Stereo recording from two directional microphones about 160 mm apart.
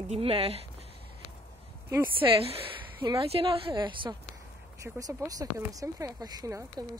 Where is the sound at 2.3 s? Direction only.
35° right (ahead or behind).